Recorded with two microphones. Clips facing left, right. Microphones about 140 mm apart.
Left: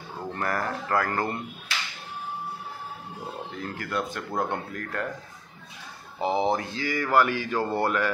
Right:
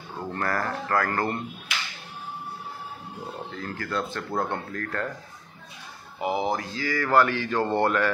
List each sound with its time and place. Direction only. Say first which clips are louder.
0.3 s speech: right 1 dB; 20° left (ahead or behind)
3.5 s speech: right 1 dB; 20° left (ahead or behind)
6.1 s speech: left 2 dB; 30° left (ahead or behind); by 8.1 s 10° left (ahead or behind)